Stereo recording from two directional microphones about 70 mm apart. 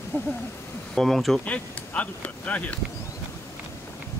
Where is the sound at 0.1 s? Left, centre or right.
Left.